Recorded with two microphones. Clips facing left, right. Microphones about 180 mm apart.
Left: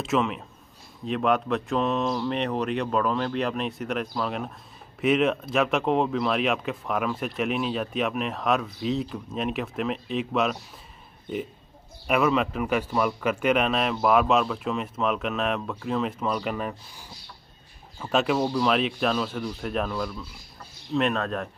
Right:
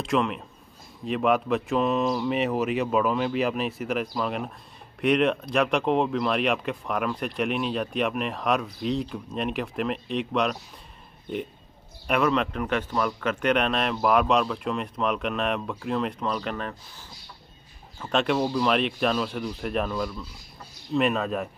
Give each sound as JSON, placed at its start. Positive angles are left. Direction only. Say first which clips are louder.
{"t": 0.0, "sound": "speech", "louder": "even", "side_deg": 0}
{"t": 12.1, "sound": "speech", "louder": "left 1 dB", "side_deg": 5}
{"t": 17.9, "sound": "speech", "louder": "even", "side_deg": 5}